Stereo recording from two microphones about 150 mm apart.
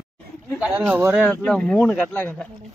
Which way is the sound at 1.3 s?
5° left (ahead or behind).